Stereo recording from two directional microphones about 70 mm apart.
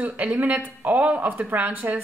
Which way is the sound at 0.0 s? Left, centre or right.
Right.